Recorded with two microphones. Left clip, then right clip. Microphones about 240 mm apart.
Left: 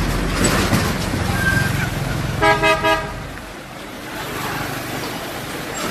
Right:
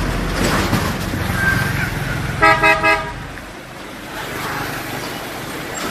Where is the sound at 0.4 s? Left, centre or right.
Left.